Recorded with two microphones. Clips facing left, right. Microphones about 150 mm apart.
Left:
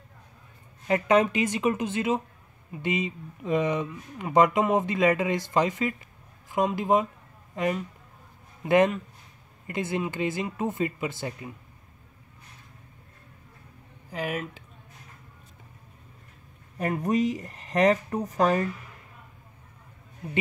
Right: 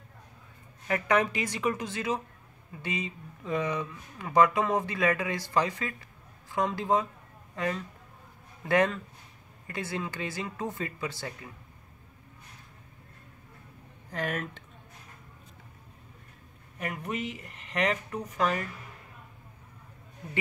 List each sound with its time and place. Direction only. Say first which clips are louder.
0.8 s speech: left 5 dB; 25° left (ahead or behind)
14.1 s speech: left 2 dB; 10° left (ahead or behind)
16.7 s speech: left 9 dB; 35° left (ahead or behind)